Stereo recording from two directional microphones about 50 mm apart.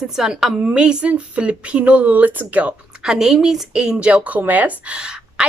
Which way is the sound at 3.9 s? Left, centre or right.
Right.